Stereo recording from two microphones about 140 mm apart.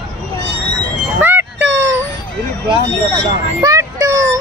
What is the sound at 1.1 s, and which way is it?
Music, 15° right (ahead or behind).